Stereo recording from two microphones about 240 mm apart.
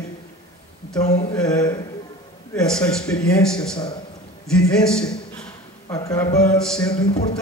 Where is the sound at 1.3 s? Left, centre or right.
Centre.